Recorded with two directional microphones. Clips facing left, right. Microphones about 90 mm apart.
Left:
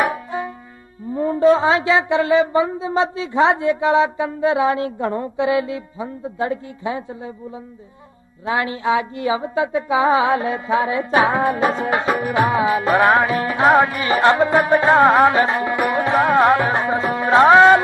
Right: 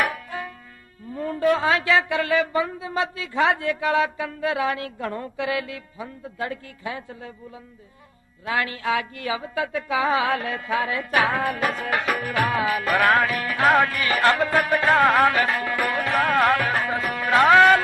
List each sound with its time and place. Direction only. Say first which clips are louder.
0.0 s music: left 5 dB; 20° left (ahead or behind)
1.1 s speech: left 7 dB; 25° left (ahead or behind)
8.5 s speech: left 5 dB; 25° left (ahead or behind)